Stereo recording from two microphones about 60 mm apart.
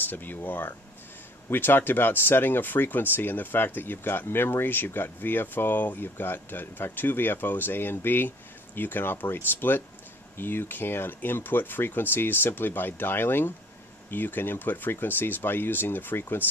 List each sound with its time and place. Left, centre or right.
0.1 s speech: left